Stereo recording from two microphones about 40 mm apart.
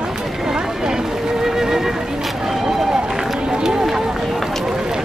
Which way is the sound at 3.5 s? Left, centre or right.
Centre.